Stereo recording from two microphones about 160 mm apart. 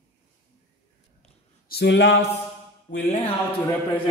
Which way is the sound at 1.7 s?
90° left.